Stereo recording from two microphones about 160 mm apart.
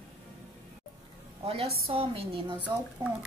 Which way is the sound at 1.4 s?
35° right (ahead or behind).